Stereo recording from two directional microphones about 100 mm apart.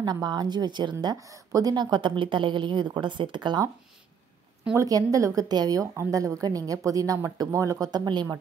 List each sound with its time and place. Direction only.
0.0 s a woman's voice: 45° right (ahead or behind)
1.0 s a woman's voice: 35° right (ahead or behind)
4.7 s a woman's voice: 35° right (ahead or behind)